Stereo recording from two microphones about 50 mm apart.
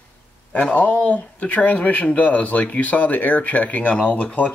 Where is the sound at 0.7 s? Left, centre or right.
Left.